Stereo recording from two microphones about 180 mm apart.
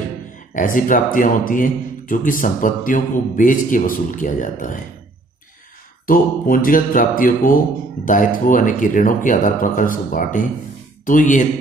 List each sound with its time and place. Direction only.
0.6 s speech: 45° left (ahead or behind)
6.0 s speech: 50° left (ahead or behind)